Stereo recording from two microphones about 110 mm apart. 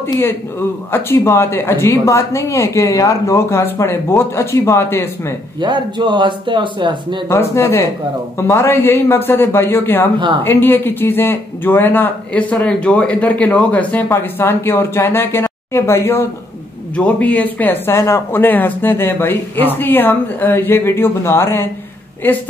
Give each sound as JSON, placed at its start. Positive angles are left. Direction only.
{"t": 0.2, "sound": "speech", "side_deg": 20}
{"t": 5.6, "sound": "speech", "side_deg": -45}
{"t": 7.2, "sound": "speech", "side_deg": 25}
{"t": 10.1, "sound": "speech", "side_deg": -50}
{"t": 10.4, "sound": "speech", "side_deg": 20}
{"t": 16.9, "sound": "a woman's voice", "side_deg": 10}